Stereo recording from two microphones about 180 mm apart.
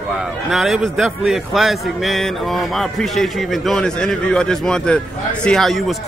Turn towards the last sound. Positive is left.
turn(degrees=0)  # may be behind; listen again after turning